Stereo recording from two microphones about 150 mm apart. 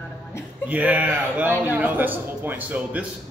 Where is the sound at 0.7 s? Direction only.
10° right (ahead or behind).